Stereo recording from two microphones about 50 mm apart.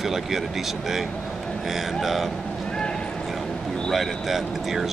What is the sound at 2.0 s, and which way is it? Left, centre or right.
Speech, centre.